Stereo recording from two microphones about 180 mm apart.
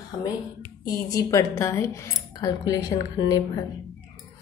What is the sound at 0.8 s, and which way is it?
Speech, 20° left (ahead or behind).